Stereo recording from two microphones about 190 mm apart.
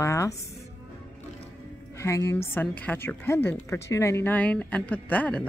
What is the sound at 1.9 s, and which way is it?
A woman's voice, 15° left (ahead or behind).